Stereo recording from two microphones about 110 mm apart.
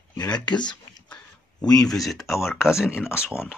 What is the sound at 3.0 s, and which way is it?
Speech, 20° left (ahead or behind).